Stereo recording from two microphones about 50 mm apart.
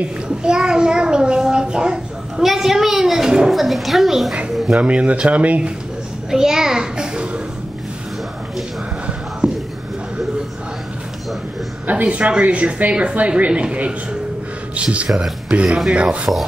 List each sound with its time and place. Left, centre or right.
0.0 s a child's voice: centre
3.5 s a woman's voice: centre
4.7 s speech: right
6.3 s a sound: centre
9.4 s a sound: centre
11.9 s speech: right
15.0 s speech: centre
15.9 s speech: right